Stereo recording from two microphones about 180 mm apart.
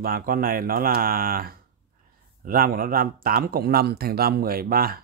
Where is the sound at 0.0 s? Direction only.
55° right (ahead or behind).